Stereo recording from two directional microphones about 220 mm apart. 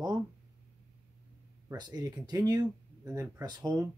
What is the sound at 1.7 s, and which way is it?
Speech, 15° right (ahead or behind).